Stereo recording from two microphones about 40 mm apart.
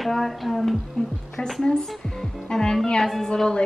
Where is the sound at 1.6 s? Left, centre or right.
Centre.